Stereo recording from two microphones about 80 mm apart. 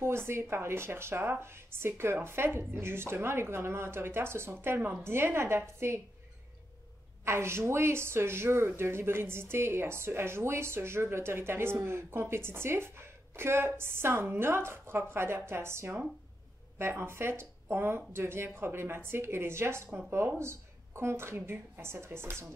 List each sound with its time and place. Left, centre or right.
0.0 s speech: right
7.2 s speech: right